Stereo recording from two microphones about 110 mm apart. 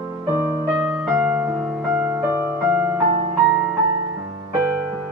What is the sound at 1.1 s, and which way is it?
Music, 15° right (ahead or behind).